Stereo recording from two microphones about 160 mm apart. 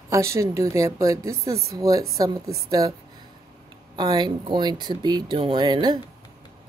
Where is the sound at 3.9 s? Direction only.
25° right (ahead or behind).